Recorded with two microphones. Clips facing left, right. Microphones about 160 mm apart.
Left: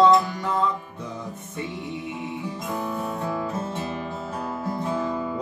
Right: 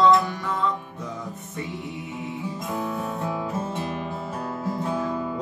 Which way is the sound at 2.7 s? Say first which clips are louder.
Even; centre (ahead or behind).